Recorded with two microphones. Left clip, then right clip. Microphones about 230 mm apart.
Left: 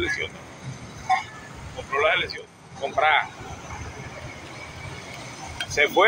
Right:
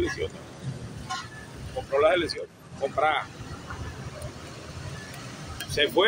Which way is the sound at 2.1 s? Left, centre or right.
Right.